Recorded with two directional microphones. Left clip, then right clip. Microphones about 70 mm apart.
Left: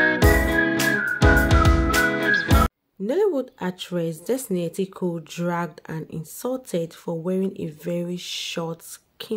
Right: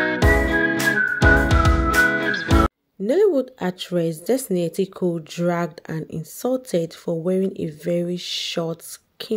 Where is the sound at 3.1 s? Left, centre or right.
Right.